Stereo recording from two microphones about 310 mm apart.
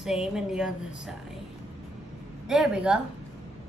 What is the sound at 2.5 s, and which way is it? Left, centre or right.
Speech, centre.